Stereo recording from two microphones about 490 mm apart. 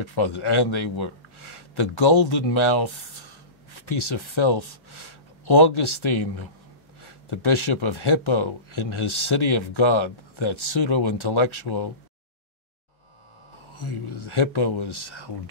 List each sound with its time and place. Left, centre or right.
0.0 s a man's voice: left
13.7 s speech: left